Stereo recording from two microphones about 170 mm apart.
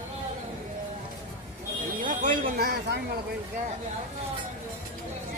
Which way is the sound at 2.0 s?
50° right (ahead or behind).